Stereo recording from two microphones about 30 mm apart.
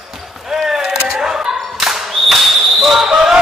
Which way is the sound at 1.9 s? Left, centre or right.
Centre.